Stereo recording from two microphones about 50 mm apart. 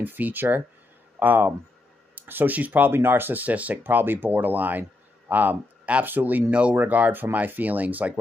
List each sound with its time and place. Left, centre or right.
0.0 s speech: right
2.9 s speech: right
3.8 s speech: right
6.5 s speech: right
6.8 s speech: right